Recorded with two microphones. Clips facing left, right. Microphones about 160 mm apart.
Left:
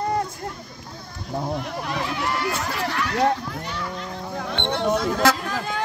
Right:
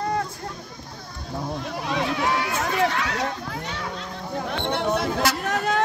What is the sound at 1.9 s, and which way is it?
Speech, 70° right (ahead or behind).